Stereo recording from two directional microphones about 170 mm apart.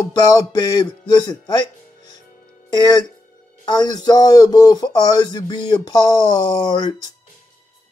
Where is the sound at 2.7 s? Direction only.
20° left (ahead or behind).